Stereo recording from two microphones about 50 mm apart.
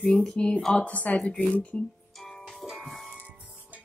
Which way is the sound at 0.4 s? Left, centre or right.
Centre.